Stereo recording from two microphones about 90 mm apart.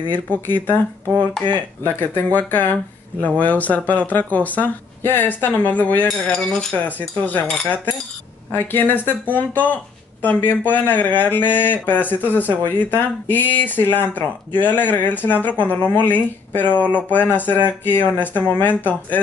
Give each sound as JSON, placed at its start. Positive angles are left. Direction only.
{"t": 0.1, "sound": "speech", "side_deg": 20}
{"t": 6.0, "sound": "cutlery", "side_deg": 5}
{"t": 7.0, "sound": "speech", "side_deg": 20}
{"t": 7.6, "sound": "cutlery", "side_deg": 15}
{"t": 8.5, "sound": "speech", "side_deg": 20}